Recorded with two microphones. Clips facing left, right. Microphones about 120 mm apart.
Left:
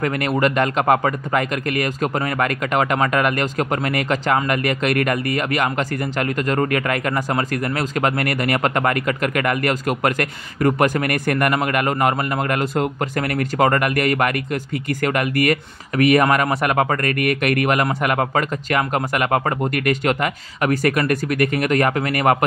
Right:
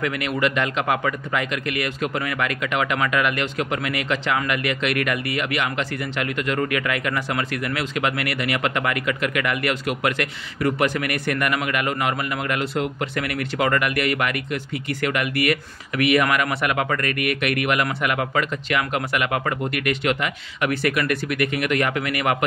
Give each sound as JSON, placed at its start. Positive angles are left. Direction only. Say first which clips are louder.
{"t": 0.0, "sound": "speech", "louder": "left 4 dB", "side_deg": 40}